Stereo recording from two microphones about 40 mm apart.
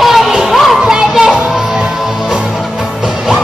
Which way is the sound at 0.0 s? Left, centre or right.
Centre.